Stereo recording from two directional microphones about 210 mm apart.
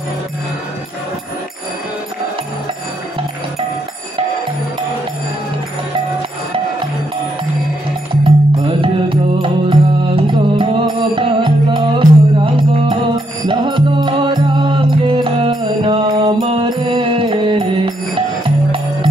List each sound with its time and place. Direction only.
8.2 s music: 25° right (ahead or behind)